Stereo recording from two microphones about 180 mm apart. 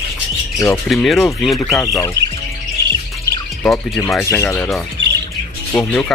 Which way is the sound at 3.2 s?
15° left (ahead or behind).